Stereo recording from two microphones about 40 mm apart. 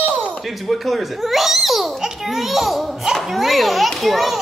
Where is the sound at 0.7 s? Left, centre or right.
Centre.